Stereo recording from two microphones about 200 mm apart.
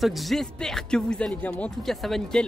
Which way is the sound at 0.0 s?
Centre (ahead or behind).